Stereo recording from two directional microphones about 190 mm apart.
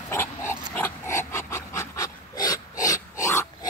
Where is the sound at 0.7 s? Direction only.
10° left (ahead or behind).